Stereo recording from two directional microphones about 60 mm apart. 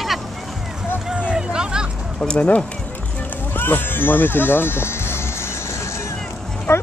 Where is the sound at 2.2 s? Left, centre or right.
Centre.